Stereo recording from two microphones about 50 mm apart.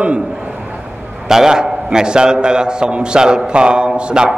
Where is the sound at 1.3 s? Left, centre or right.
Centre.